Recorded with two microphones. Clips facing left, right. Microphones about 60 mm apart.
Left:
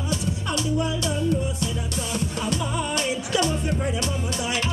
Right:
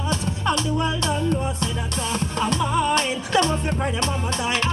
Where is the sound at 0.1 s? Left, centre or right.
Right.